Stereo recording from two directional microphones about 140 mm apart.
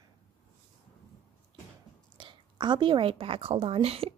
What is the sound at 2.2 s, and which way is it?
A woman's voice, 35° right (ahead or behind).